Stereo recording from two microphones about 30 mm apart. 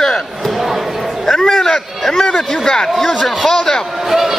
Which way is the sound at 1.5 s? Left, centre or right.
Centre.